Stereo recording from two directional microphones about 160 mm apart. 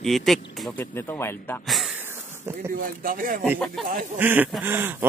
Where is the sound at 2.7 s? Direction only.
60° right (ahead or behind).